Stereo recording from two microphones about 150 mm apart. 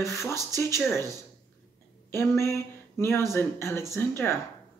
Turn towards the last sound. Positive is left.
turn(degrees=15)  # may be behind; listen again after turning